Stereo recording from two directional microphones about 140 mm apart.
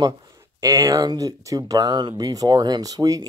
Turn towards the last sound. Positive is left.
turn(degrees=-25)  # may be behind; listen again after turning